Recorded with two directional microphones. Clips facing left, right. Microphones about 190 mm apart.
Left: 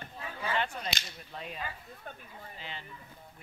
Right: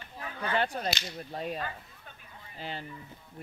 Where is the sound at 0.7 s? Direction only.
40° right (ahead or behind).